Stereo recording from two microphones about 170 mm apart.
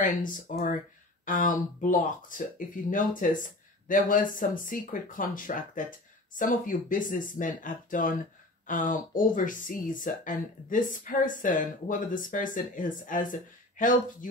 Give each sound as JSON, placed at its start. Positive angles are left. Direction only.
{"t": 0.0, "sound": "speech", "side_deg": 50}